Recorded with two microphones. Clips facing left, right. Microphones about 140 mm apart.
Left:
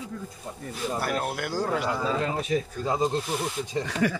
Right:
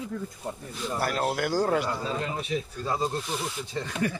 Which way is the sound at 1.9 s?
90° left.